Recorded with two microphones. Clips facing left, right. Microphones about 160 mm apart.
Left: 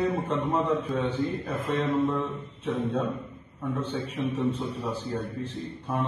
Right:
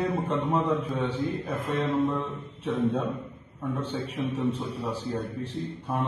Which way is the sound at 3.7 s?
10° right (ahead or behind).